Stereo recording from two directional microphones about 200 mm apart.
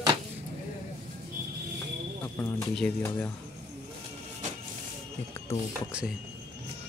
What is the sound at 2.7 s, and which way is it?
Speech, 5° left (ahead or behind).